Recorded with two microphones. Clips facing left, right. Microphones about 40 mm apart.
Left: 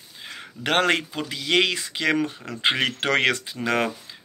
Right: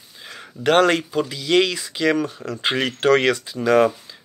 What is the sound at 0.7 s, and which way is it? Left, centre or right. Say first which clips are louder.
Speech: right 5 dB; left.